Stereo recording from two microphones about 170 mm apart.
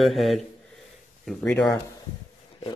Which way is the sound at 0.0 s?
Centre (ahead or behind).